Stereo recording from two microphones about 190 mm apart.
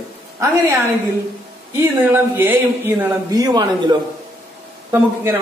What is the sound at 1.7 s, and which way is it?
Speech, 10° right (ahead or behind).